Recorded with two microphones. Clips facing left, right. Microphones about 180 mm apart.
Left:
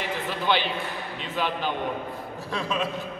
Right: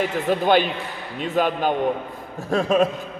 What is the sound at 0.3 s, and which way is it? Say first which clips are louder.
Speech: right 8 dB; 50° right (ahead or behind).